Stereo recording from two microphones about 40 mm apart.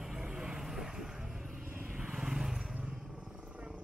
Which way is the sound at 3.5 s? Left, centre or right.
Right.